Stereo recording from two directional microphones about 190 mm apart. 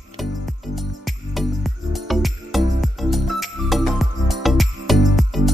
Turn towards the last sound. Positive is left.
turn(degrees=0)  # may be behind; listen again after turning